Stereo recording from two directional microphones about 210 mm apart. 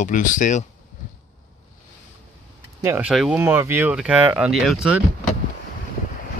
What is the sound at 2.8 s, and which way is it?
Speech, 10° right (ahead or behind).